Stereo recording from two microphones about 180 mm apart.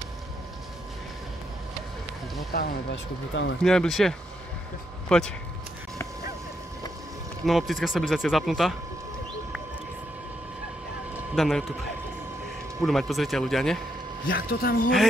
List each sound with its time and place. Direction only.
2.5 s speech: 65° left (ahead or behind); by 3.5 s 80° left
3.6 s speech: centre (ahead or behind)
5.1 s speech: 5° left (ahead or behind)
7.4 s speech: centre (ahead or behind)
11.3 s speech: centre (ahead or behind)
12.8 s speech: centre (ahead or behind)
14.3 s speech: 55° left (ahead or behind)